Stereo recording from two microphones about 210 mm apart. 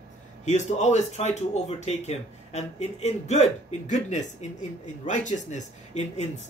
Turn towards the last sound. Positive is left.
turn(degrees=30)  # may be behind; listen again after turning